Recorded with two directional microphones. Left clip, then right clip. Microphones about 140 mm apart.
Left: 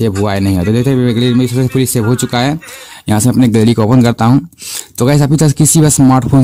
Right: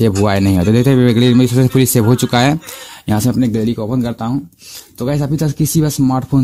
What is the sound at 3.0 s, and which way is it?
Speech, 20° left (ahead or behind).